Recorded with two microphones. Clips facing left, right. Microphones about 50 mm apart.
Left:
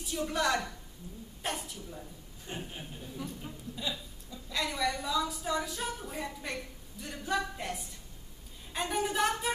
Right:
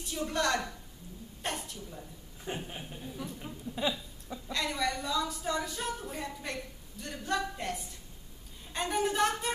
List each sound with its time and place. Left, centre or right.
0.0 s a woman's voice: centre
1.4 s a sound: centre
2.5 s speech: right
2.9 s a woman's voice: centre